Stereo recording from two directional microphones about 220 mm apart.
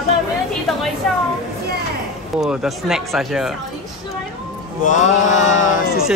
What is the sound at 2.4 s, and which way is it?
Speech, 5° right (ahead or behind).